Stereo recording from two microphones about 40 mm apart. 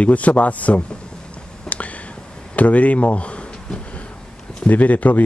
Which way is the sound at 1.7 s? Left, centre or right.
Left.